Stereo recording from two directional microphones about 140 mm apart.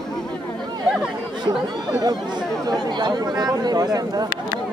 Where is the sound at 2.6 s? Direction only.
30° right (ahead or behind).